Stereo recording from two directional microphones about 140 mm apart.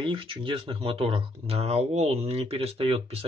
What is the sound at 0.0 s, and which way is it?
Speech, 35° right (ahead or behind).